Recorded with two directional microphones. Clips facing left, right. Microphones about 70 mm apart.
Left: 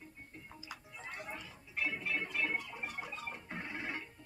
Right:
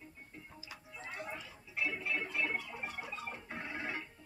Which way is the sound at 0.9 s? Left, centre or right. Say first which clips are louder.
Right 3 dB; centre.